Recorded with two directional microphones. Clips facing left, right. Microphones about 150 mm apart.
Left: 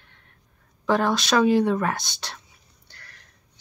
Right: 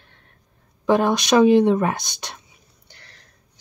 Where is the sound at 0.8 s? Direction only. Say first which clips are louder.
Right 4 dB; 20° right (ahead or behind).